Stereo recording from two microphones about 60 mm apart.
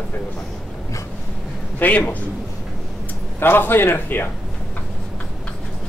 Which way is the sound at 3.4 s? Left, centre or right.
Left.